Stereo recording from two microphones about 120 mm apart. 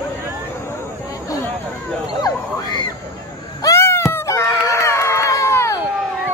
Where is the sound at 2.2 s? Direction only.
35° left (ahead or behind).